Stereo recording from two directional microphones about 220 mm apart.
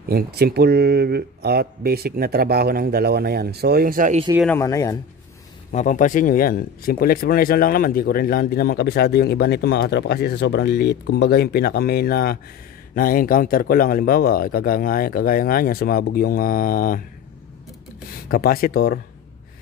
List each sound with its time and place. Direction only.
0.1 s speech: 45° right (ahead or behind)
4.4 s speech: 10° left (ahead or behind)
5.7 s speech: 35° left (ahead or behind)
18.3 s speech: 40° left (ahead or behind)